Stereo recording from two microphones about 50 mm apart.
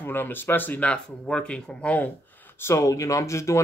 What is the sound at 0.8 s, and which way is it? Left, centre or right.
Speech, left.